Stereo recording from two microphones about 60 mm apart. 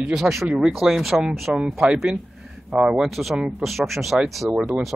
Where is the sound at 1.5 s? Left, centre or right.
Centre.